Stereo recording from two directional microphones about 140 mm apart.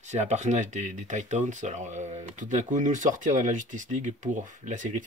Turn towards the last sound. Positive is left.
turn(degrees=-65)  # may be behind; listen again after turning